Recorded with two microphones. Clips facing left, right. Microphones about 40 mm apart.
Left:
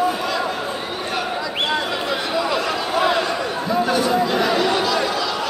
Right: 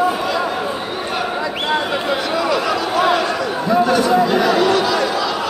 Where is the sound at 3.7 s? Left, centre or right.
Centre.